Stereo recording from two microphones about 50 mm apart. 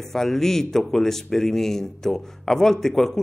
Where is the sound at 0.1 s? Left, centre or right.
Centre.